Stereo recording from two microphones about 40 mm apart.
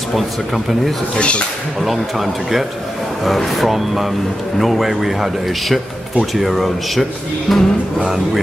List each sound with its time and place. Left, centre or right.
1.1 s speech: left
1.8 s speech: centre